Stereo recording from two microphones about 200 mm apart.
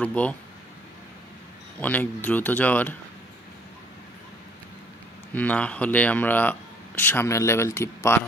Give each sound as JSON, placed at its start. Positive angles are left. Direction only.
{"t": 0.0, "sound": "speech", "side_deg": 5}
{"t": 1.8, "sound": "speech", "side_deg": 10}
{"t": 5.3, "sound": "speech", "side_deg": 10}